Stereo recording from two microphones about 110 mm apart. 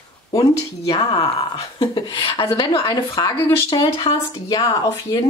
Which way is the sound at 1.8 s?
45° left (ahead or behind).